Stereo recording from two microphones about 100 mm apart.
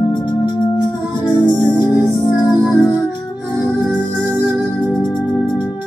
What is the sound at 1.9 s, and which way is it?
Music, 5° right (ahead or behind).